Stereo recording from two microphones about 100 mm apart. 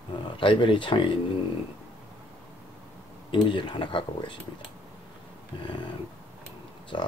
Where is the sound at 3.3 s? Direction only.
50° left (ahead or behind).